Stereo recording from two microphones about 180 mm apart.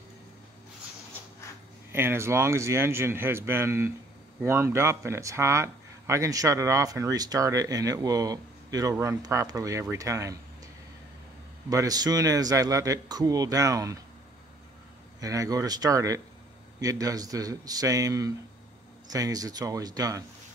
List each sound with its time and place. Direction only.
1.9 s speech: 15° right (ahead or behind)
11.7 s a man's voice: 20° right (ahead or behind)
15.1 s a man's voice: 20° right (ahead or behind)